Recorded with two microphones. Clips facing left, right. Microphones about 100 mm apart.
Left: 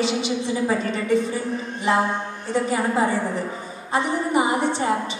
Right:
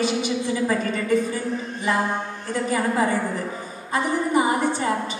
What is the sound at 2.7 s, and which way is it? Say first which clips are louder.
A woman's voice: right 1 dB; 25° left (ahead or behind).